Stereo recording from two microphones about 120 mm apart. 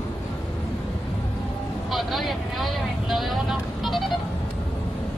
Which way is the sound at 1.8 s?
Centre (ahead or behind).